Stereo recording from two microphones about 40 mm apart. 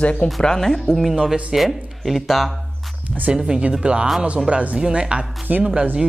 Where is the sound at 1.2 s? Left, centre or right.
Centre.